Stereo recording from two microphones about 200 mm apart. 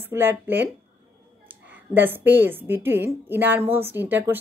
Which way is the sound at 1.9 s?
10° right (ahead or behind).